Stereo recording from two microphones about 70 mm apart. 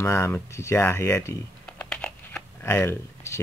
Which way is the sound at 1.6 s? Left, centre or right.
Centre.